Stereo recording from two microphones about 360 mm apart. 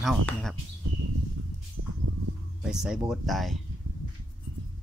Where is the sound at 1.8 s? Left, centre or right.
Right.